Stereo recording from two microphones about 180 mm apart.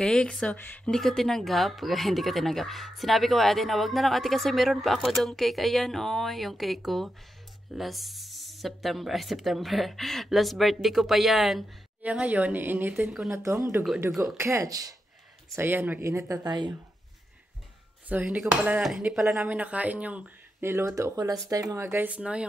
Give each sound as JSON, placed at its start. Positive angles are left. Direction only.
{"t": 0.0, "sound": "speech", "side_deg": 5}
{"t": 13.3, "sound": "speech", "side_deg": -15}
{"t": 18.0, "sound": "speech", "side_deg": -10}